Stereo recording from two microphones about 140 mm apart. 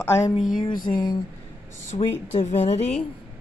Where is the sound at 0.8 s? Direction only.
30° left (ahead or behind).